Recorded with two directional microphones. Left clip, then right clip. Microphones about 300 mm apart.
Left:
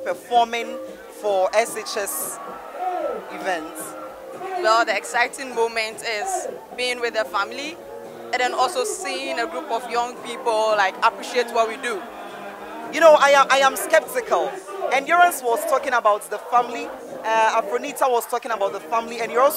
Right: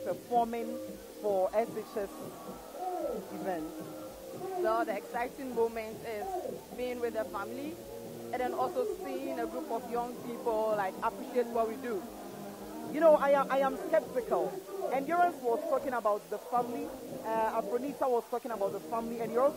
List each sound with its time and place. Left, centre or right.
0.0 s speech: centre
1.2 s speech: centre
1.5 s speech: centre
2.9 s owl: centre
4.6 s speech: centre